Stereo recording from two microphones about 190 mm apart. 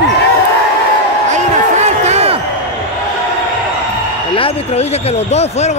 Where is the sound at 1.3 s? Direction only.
40° right (ahead or behind).